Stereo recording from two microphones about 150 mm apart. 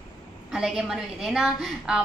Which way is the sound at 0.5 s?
Centre (ahead or behind).